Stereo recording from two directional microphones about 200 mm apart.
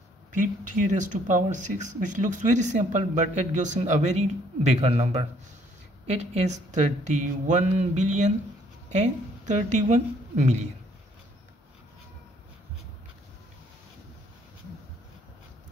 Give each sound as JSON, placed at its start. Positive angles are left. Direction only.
{"t": 0.3, "sound": "speech", "side_deg": -40}